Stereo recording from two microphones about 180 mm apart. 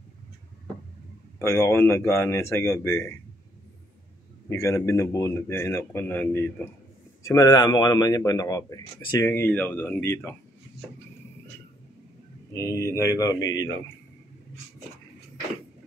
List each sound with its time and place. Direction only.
1.4 s speech: 15° left (ahead or behind)
4.5 s a man's voice: 15° left (ahead or behind)
12.5 s speech: 15° left (ahead or behind)